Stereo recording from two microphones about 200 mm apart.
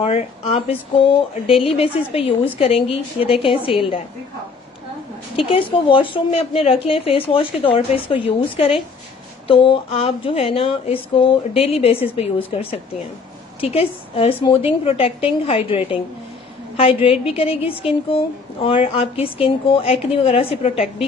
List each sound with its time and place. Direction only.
0.0 s a woman's voice: 30° left (ahead or behind)
5.3 s a woman's voice: 25° left (ahead or behind)